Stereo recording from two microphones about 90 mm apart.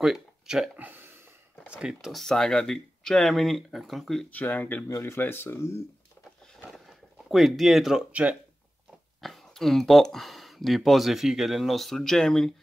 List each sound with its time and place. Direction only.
0.0 s speech: 5° right (ahead or behind)
0.7 s a sound: 20° right (ahead or behind)
1.7 s speech: 10° right (ahead or behind)
4.3 s speech: 20° left (ahead or behind)
4.8 s speech: 30° left (ahead or behind)
6.6 s a sound: 5° right (ahead or behind)
8.1 s speech: 15° right (ahead or behind)
9.2 s speech: 5° left (ahead or behind)